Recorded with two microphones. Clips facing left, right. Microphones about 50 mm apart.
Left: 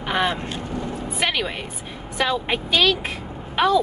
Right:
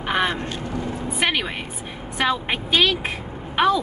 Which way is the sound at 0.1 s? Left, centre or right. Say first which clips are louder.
Even; centre.